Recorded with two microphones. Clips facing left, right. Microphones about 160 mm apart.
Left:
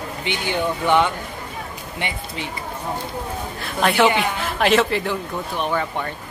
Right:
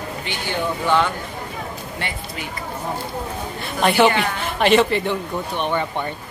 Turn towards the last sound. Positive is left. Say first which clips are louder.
# right 1 dB
turn(degrees=0)  # may be behind; listen again after turning